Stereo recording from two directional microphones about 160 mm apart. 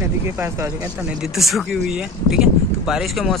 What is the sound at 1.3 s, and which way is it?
Speech, centre (ahead or behind).